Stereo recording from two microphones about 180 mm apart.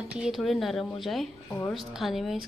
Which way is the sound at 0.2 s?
Centre (ahead or behind).